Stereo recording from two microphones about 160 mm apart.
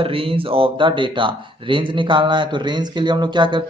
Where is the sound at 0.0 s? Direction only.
35° right (ahead or behind).